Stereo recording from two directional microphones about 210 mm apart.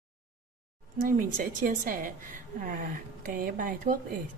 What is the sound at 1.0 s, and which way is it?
A woman's voice, 40° right (ahead or behind).